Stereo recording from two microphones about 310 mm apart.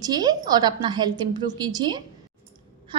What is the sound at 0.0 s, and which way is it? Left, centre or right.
A woman's voice, centre.